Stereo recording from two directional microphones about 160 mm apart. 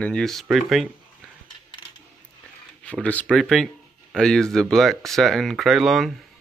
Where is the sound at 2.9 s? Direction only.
10° left (ahead or behind).